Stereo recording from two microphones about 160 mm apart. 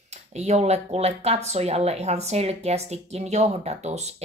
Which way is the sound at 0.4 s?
45° right (ahead or behind).